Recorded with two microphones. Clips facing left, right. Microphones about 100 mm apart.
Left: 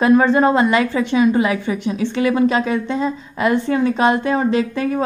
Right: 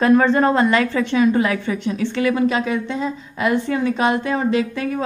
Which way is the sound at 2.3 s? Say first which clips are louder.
Left 2 dB; 35° left (ahead or behind).